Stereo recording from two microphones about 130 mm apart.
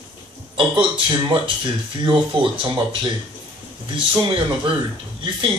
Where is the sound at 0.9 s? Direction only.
40° right (ahead or behind).